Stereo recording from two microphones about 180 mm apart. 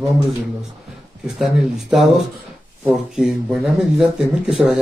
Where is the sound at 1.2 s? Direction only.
5° right (ahead or behind).